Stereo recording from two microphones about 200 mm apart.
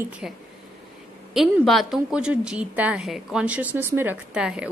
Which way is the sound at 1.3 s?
Centre (ahead or behind).